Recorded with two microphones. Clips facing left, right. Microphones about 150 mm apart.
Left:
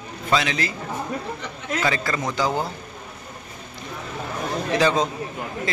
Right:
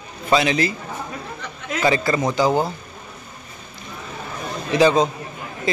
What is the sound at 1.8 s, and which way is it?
Speech, 20° right (ahead or behind).